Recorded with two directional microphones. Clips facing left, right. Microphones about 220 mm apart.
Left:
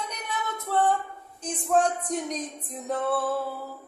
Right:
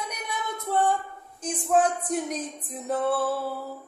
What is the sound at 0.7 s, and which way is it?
Music, 10° right (ahead or behind).